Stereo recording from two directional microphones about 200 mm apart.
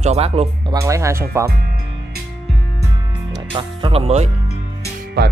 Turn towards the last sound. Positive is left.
turn(degrees=-55)  # may be behind; listen again after turning